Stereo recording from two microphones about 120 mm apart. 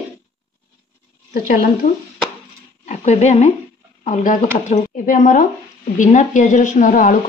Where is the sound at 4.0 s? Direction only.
90° left.